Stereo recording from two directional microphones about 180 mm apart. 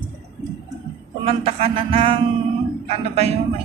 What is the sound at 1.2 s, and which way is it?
Speech, 30° right (ahead or behind).